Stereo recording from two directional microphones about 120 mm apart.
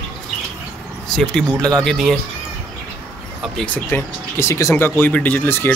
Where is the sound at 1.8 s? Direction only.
5° left (ahead or behind).